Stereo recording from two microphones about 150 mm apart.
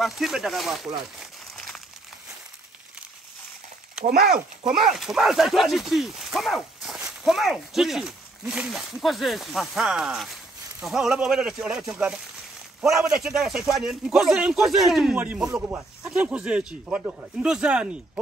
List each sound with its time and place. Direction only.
0.0 s speech: centre (ahead or behind)
4.0 s speech: 80° right
4.8 s speech: 5° right (ahead or behind)